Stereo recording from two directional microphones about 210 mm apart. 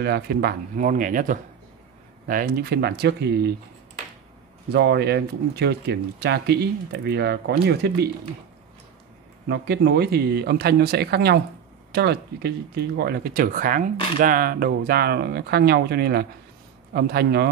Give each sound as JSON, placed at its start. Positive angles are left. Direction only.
{"t": 0.0, "sound": "speech", "side_deg": -50}
{"t": 4.7, "sound": "speech", "side_deg": -50}
{"t": 9.5, "sound": "speech", "side_deg": -50}